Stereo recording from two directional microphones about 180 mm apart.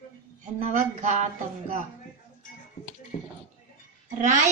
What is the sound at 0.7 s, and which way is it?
Speech, 45° right (ahead or behind).